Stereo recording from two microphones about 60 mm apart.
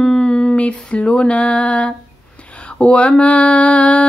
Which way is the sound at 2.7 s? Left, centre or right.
Centre.